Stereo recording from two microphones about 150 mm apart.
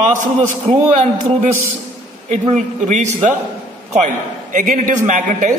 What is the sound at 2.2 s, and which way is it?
A man's voice, 50° right (ahead or behind).